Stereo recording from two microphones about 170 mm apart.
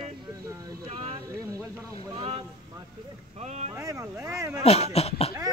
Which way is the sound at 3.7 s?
20° right (ahead or behind).